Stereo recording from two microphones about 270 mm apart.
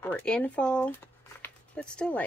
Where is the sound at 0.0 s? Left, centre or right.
Centre.